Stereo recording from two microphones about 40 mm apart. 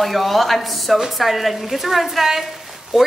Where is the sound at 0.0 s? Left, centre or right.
Centre.